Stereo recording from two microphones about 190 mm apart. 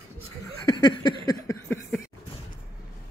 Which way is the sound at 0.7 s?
20° left (ahead or behind).